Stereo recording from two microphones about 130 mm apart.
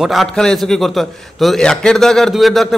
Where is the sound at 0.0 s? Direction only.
Centre (ahead or behind).